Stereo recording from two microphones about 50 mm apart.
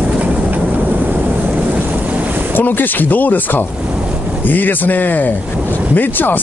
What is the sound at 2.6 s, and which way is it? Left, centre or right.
Speech, left.